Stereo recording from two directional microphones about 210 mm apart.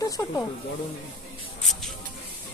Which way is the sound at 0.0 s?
15° left (ahead or behind).